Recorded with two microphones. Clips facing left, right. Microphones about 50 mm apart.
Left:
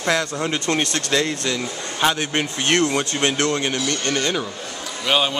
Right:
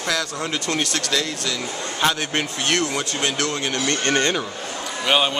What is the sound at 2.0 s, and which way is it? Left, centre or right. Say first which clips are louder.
Speech: left 1 dB; centre.